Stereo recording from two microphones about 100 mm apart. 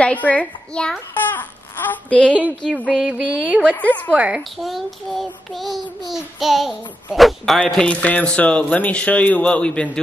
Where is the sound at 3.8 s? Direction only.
15° left (ahead or behind).